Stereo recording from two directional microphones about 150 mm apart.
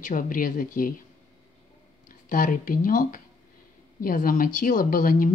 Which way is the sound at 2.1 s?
65° left (ahead or behind).